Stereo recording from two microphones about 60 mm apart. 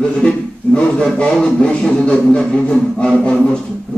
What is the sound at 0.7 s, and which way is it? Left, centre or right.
A man's voice, centre.